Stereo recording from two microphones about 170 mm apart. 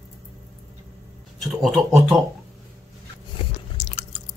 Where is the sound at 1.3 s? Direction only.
Centre (ahead or behind).